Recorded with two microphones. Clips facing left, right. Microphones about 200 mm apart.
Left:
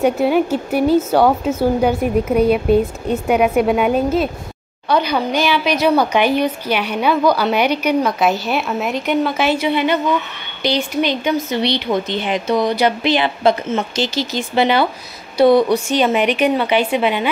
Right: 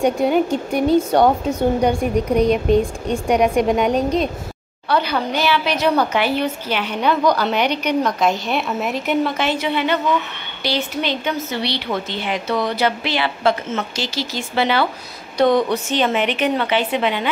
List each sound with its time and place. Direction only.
0.0 s a woman's voice: 5° left (ahead or behind)